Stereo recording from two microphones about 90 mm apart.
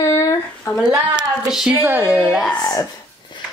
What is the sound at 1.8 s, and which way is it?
Speech, 20° right (ahead or behind).